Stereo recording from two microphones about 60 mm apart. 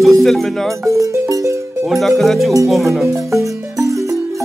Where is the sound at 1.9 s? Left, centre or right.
Centre.